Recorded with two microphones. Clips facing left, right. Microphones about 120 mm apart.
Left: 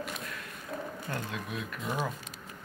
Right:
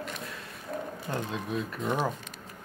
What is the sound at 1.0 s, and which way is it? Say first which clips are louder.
Speech: right 7 dB; 25° right (ahead or behind).